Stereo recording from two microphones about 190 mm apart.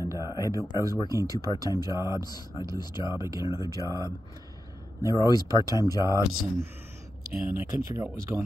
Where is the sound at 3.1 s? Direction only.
15° right (ahead or behind).